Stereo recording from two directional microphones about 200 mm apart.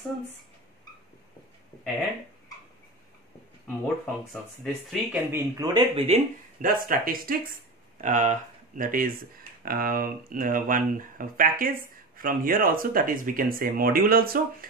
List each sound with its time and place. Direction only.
3.6 s speech: 5° left (ahead or behind)
4.9 s speech: 10° right (ahead or behind)
5.9 s speech: 30° right (ahead or behind)
6.6 s speech: 45° right (ahead or behind)